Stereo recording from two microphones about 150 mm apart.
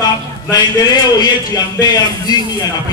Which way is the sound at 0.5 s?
30° left (ahead or behind).